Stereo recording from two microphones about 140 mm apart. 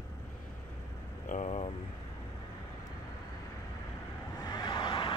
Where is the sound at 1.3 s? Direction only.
55° left (ahead or behind).